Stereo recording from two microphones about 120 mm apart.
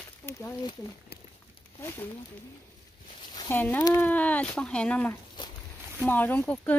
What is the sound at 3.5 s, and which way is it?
Speech, 15° left (ahead or behind).